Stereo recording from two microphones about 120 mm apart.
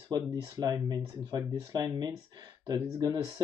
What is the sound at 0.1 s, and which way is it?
Speech, 35° right (ahead or behind).